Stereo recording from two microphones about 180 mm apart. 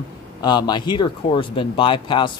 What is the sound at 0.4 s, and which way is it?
Speech, 25° left (ahead or behind).